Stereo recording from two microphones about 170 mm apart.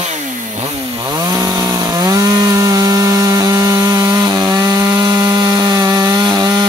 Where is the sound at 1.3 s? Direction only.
20° right (ahead or behind).